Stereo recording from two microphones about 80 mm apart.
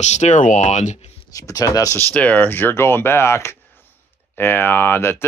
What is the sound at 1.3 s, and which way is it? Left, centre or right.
Speech, left.